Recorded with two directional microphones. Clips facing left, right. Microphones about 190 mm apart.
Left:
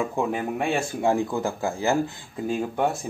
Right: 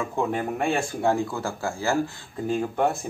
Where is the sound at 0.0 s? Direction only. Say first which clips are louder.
Left 1 dB; 5° left (ahead or behind).